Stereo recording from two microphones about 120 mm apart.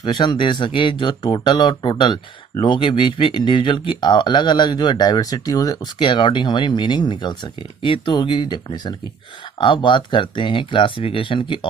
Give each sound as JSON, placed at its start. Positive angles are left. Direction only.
{"t": 0.0, "sound": "speech", "side_deg": 35}